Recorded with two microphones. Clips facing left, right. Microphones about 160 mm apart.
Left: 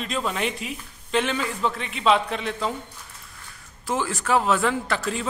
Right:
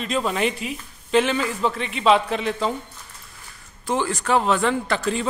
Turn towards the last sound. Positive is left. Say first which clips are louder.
# right 3 dB
turn(degrees=0)  # may be behind; listen again after turning